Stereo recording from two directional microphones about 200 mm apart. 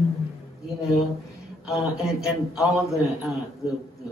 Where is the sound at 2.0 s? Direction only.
Centre (ahead or behind).